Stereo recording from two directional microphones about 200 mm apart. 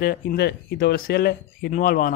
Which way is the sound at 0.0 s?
50° left (ahead or behind).